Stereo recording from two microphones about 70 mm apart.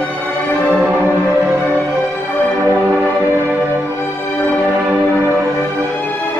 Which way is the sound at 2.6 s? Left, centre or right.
Right.